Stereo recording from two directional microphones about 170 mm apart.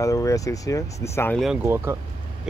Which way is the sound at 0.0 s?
20° left (ahead or behind).